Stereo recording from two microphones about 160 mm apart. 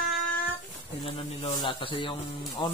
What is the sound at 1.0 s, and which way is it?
Speech, 40° left (ahead or behind).